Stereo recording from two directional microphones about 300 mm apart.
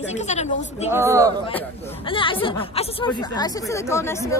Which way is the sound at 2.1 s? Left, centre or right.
Centre.